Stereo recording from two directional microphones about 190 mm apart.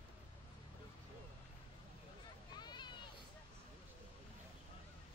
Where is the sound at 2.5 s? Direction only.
20° left (ahead or behind).